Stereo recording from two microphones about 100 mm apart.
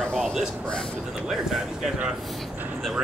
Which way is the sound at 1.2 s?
5° right (ahead or behind).